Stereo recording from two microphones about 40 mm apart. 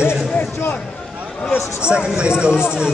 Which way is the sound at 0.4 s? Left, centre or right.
Left.